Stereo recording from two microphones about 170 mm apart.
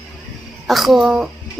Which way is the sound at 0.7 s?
Centre (ahead or behind).